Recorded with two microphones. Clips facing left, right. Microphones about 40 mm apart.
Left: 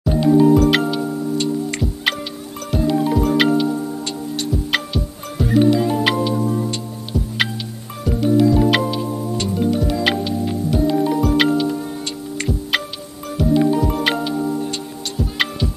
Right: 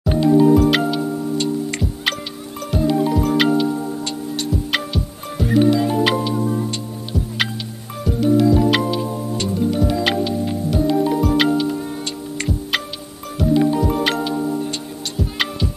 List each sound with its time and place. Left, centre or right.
0.2 s music: centre